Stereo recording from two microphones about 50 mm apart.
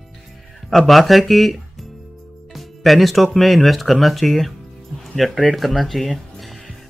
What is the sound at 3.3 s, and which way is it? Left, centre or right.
Speech, centre.